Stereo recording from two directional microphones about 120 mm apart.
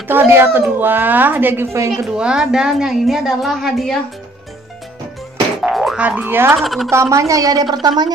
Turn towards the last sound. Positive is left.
turn(degrees=-35)  # may be behind; listen again after turning